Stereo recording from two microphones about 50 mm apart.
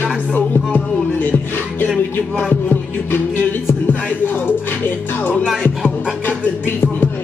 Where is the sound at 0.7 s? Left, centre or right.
Left.